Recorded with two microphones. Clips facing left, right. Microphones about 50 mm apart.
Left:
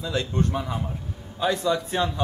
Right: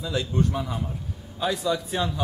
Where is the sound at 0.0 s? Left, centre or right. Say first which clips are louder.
Even; centre.